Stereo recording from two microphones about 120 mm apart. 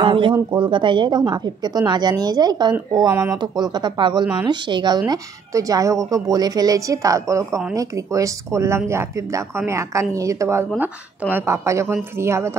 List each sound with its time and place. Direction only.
0.0 s a woman's voice: 45° right (ahead or behind); by 12.4 s 20° right (ahead or behind)